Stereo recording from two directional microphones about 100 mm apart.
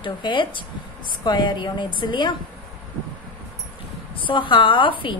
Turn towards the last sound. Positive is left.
turn(degrees=55)  # may be behind; listen again after turning